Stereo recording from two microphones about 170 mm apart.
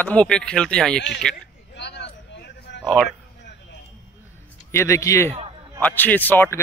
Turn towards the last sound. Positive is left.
turn(degrees=10)  # may be behind; listen again after turning